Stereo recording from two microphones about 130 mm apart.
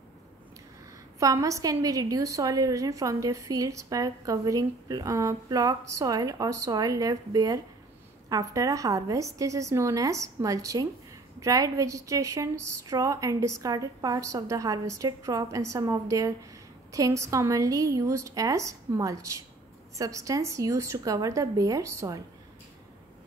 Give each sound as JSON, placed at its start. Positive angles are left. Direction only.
{"t": 1.2, "sound": "a woman's voice", "side_deg": -25}